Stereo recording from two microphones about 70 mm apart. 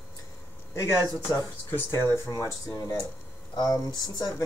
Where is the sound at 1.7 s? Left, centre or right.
Left.